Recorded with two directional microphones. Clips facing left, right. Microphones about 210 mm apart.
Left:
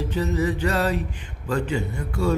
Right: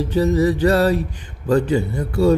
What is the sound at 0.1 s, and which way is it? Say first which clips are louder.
Speech: right 8 dB; 35° right (ahead or behind).